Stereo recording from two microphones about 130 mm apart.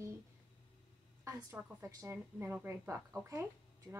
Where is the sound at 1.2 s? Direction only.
20° right (ahead or behind).